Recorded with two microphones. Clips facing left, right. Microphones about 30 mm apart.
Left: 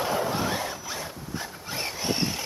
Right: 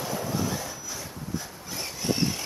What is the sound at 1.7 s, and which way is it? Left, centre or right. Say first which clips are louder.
Wild animals: even; left.